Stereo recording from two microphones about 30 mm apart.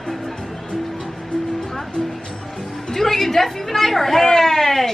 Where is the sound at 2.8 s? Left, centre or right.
Centre.